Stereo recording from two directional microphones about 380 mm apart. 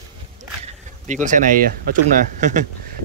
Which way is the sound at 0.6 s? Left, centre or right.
Centre.